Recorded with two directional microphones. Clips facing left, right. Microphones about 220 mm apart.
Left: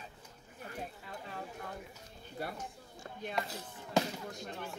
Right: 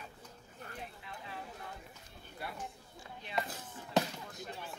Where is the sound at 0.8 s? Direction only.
45° left (ahead or behind).